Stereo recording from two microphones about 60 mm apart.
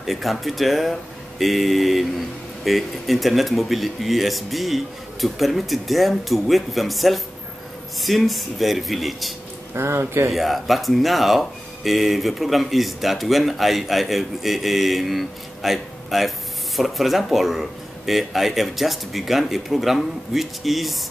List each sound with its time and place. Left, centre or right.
0.0 s speech: centre
9.8 s speech: right
10.3 s speech: centre